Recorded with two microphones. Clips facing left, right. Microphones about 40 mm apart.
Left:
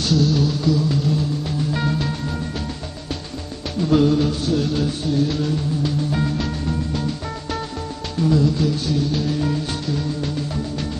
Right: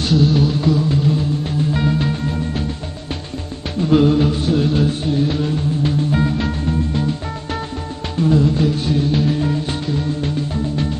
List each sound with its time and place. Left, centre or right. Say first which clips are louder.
0.0 s music: right 3 dB; right
3.8 s music: right 3 dB; right
8.2 s music: right 3 dB; right